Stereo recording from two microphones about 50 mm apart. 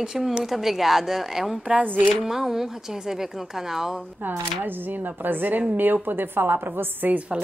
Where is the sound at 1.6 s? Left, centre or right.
Right.